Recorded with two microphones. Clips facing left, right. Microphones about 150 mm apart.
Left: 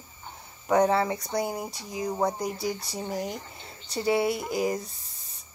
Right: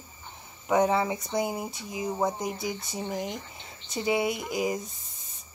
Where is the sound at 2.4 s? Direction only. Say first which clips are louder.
Left 2 dB; 20° right (ahead or behind).